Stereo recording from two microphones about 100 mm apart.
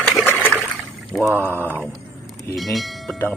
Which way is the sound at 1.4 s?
20° left (ahead or behind).